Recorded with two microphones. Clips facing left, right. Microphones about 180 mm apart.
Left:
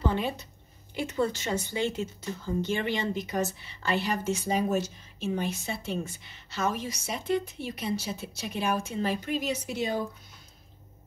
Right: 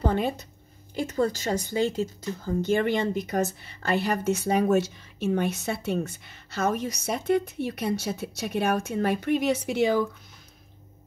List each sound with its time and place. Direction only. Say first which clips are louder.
0.0 s a sound: right 3 dB; 45° right (ahead or behind)
0.9 s speech: right 3 dB; 40° right (ahead or behind)
4.4 s speech: right 5 dB; 65° right (ahead or behind)